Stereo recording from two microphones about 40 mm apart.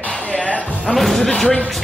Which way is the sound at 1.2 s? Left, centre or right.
Left.